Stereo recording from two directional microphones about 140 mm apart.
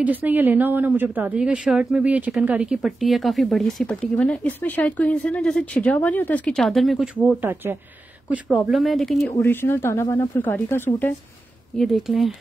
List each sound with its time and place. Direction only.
0.0 s speech: 10° right (ahead or behind)
8.5 s speech: centre (ahead or behind)
9.4 s speech: 15° left (ahead or behind)
11.8 s speech: centre (ahead or behind)